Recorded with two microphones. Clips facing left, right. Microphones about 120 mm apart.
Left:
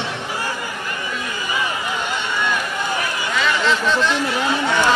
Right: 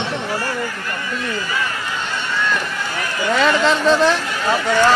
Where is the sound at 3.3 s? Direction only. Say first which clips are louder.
Right 3 dB; 40° right (ahead or behind).